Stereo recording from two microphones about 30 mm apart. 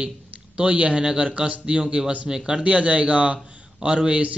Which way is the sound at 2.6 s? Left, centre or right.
Right.